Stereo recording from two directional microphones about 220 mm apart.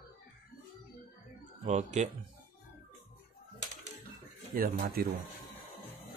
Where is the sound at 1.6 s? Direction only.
30° right (ahead or behind).